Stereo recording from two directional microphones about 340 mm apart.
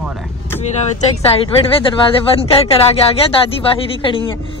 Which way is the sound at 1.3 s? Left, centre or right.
Centre.